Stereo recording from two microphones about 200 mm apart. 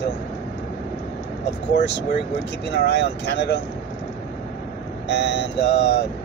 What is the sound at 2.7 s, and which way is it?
Speech, 55° left (ahead or behind).